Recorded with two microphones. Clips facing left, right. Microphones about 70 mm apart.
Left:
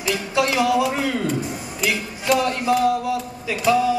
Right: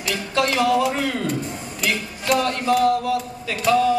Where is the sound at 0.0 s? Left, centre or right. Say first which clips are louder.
Left 1 dB; centre.